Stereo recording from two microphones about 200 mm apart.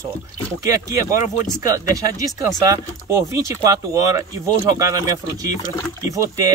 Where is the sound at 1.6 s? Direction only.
15° right (ahead or behind).